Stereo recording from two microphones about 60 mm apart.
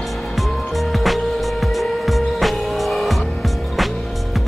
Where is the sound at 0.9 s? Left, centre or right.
Centre.